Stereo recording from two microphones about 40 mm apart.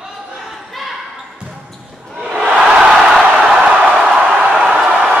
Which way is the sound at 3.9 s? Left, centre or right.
Centre.